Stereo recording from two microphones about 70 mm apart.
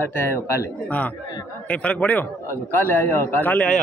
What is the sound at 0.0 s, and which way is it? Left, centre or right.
Speech, left.